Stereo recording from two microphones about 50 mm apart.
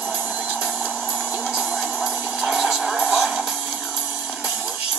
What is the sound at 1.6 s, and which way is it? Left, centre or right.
Music, centre.